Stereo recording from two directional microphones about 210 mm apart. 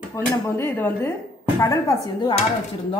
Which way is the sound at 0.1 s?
10° left (ahead or behind).